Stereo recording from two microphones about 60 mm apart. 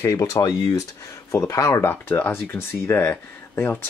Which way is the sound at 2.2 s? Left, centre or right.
Left.